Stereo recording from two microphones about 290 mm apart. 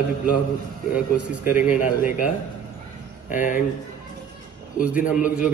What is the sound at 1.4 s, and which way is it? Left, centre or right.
Speech, centre.